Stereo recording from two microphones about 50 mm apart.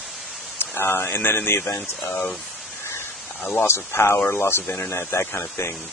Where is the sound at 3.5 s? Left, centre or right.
Left.